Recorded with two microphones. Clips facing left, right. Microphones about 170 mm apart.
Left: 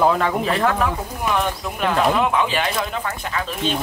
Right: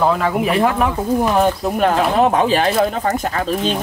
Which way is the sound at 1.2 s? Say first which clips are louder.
Right 3 dB; 40° right (ahead or behind).